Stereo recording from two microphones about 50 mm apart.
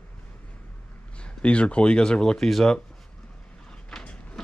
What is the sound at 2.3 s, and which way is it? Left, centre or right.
Speech, centre.